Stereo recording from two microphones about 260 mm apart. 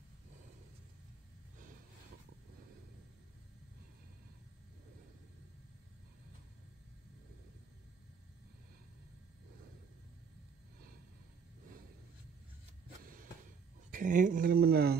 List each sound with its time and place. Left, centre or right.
13.9 s speech: right